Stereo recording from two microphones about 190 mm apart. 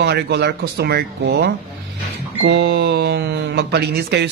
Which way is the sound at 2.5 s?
60° right (ahead or behind).